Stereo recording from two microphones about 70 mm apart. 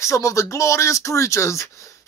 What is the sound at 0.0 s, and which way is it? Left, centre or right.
Speech, left.